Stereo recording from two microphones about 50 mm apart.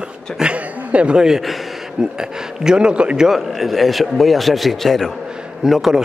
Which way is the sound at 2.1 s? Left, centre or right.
Centre.